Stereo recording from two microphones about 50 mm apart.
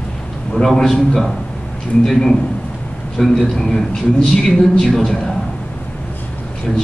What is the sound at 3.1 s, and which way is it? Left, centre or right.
A man's voice, centre.